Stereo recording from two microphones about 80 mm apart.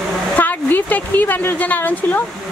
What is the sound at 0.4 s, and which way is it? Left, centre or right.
Speech, left.